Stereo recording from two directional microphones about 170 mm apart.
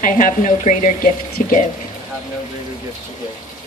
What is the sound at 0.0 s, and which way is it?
A woman's voice, 50° left (ahead or behind).